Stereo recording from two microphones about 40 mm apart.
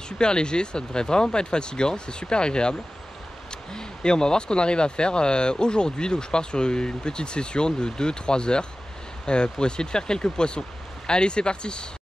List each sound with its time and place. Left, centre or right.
0.2 s speech: left